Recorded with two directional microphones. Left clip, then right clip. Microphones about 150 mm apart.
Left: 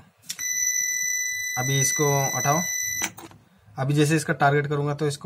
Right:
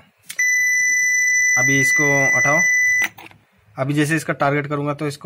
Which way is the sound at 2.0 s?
30° right (ahead or behind).